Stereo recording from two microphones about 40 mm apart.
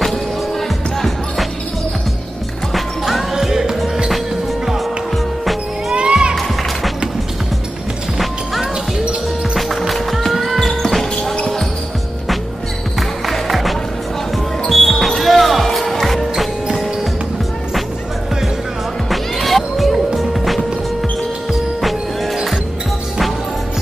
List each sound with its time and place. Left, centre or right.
0.0 s music: centre
2.7 s music: centre
5.9 s music: right
9.6 s music: centre
10.3 s music: centre
10.6 s basketball bounce: centre
13.2 s music: centre
14.7 s basketball bounce: centre
19.4 s music: centre
21.8 s music: centre